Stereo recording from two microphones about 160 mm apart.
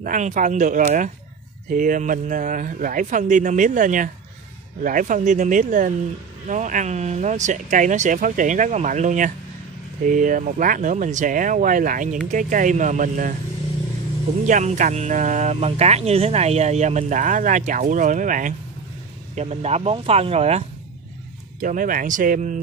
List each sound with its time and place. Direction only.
0.0 s speech: 55° right (ahead or behind)
14.4 s speech: 50° right (ahead or behind)
19.3 s speech: 45° right (ahead or behind)
21.5 s speech: 55° right (ahead or behind)